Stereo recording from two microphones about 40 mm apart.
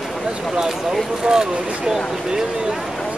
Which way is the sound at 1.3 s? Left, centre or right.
Centre.